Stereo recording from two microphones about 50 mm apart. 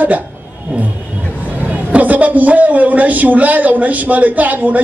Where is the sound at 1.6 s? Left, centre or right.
Right.